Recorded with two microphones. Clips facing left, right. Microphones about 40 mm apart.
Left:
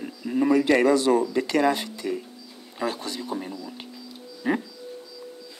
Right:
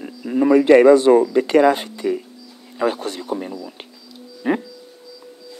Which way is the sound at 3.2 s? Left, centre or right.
Right.